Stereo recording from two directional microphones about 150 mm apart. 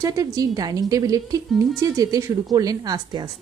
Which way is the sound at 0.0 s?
25° right (ahead or behind).